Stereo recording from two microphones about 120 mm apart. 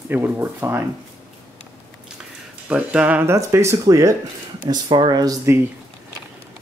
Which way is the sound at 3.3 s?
25° right (ahead or behind).